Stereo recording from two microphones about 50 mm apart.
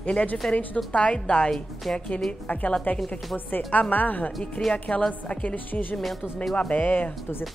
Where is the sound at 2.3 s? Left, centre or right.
Left.